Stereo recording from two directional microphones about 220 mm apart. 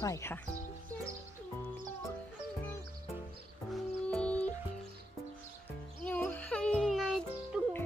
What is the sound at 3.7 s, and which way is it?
Music, 5° left (ahead or behind).